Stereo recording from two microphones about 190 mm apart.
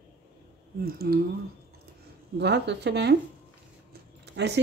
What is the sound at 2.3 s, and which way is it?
Speech, 65° right (ahead or behind).